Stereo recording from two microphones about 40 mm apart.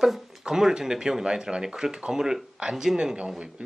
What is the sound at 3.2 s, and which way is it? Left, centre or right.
Speech, right.